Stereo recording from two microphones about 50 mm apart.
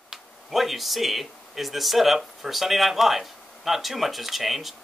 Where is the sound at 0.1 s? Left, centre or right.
Centre.